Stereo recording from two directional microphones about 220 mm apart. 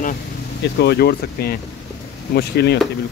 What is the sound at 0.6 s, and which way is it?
Speech, 50° left (ahead or behind).